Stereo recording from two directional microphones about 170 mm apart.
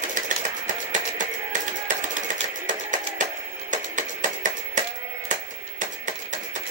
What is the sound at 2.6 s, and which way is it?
Music, 50° right (ahead or behind).